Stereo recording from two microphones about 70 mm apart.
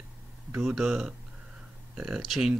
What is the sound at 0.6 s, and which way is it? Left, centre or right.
Speech, centre.